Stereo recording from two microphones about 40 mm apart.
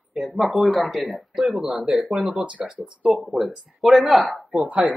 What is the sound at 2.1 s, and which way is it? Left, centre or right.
Speech, right.